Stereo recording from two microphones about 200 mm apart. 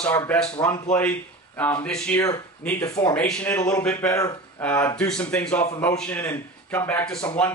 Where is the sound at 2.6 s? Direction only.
15° left (ahead or behind).